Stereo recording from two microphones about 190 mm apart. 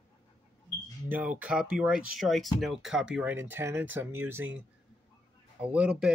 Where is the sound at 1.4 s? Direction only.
5° right (ahead or behind).